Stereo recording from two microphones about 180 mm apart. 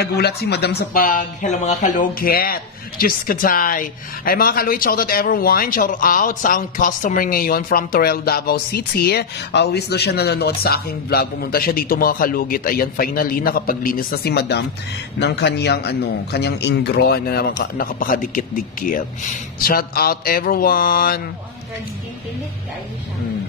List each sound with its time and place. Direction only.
0.0 s speech: 65° left (ahead or behind)